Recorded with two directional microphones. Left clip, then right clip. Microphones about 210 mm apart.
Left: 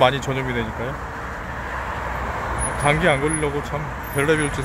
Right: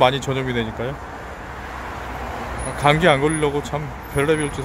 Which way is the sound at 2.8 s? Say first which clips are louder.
Right 3 dB; 20° right (ahead or behind).